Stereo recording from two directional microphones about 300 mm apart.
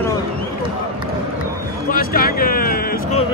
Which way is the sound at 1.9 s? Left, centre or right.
Left.